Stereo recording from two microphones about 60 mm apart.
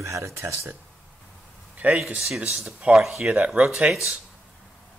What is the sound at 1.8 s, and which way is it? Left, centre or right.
Speech, right.